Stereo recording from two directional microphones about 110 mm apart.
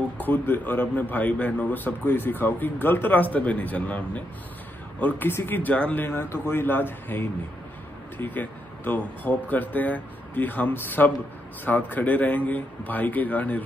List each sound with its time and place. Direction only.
0.2 s a man's voice: 15° left (ahead or behind)